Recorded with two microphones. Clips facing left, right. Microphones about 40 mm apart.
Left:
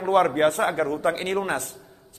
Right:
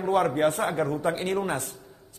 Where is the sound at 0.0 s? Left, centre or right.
Left.